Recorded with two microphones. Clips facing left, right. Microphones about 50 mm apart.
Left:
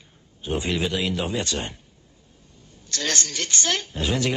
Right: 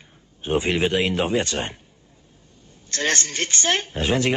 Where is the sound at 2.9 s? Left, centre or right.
Right.